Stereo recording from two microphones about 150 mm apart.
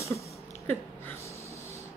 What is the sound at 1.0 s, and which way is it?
Snort, 20° left (ahead or behind).